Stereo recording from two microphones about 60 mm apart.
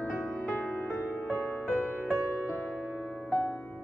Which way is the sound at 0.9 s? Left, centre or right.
Left.